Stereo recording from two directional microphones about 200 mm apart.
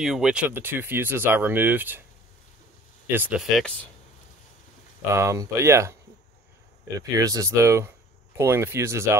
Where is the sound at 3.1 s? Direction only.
10° right (ahead or behind).